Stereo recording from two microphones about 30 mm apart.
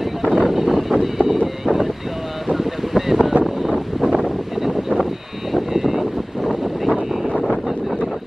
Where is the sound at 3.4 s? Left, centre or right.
Centre.